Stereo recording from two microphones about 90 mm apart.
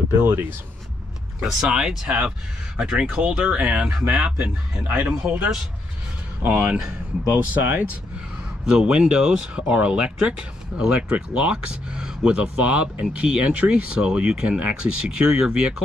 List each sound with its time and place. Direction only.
0.2 s speech: 25° right (ahead or behind)
1.4 s speech: 5° right (ahead or behind)